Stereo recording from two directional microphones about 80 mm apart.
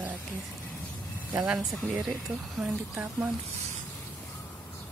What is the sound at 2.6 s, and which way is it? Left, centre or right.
Speech, centre.